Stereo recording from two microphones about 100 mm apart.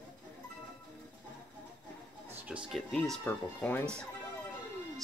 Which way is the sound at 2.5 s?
5° right (ahead or behind).